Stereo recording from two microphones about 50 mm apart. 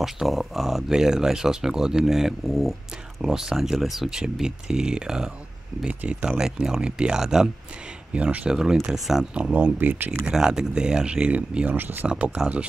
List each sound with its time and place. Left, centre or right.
0.0 s speech: centre
3.2 s speech: centre
8.1 s speech: right
8.9 s speech: centre
9.3 s speech: right
9.6 s speech: right
10.2 s speech: centre; by 12.1 s right
12.1 s speech: right